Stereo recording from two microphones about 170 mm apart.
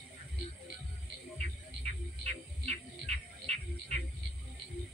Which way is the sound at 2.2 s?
40° right (ahead or behind).